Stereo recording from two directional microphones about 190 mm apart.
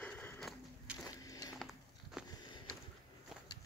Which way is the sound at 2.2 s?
5° right (ahead or behind).